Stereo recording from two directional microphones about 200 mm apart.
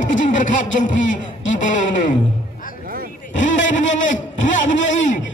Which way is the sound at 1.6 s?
40° left (ahead or behind).